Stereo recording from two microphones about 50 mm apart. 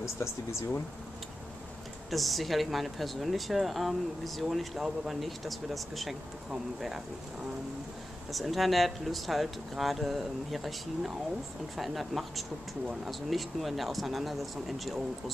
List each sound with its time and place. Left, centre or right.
0.0 s speech: left
2.0 s speech: centre
8.3 s speech: centre